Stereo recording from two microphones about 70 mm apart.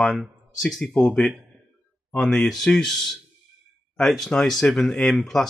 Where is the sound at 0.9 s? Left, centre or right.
Centre.